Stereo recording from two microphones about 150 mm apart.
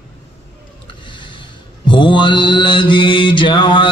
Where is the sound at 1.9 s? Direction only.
30° left (ahead or behind).